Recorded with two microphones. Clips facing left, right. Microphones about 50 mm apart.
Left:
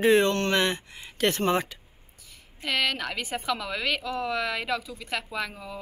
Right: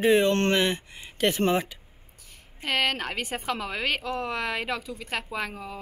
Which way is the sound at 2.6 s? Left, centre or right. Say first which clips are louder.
Right 1 dB; right.